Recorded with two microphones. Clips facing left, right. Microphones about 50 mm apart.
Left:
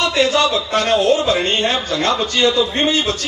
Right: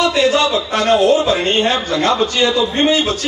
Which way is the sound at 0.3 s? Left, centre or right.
Right.